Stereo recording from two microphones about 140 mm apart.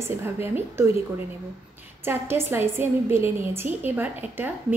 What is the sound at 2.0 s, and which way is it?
A woman's voice, 15° right (ahead or behind).